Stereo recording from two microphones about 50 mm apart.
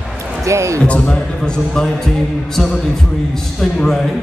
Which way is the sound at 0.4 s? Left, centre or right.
Right.